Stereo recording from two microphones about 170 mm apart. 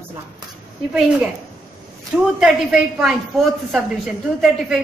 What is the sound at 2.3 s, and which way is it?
A woman's voice, 5° right (ahead or behind).